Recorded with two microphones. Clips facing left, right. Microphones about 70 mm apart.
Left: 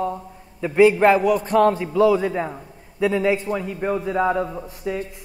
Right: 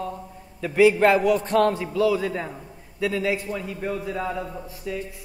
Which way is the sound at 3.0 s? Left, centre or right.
Left.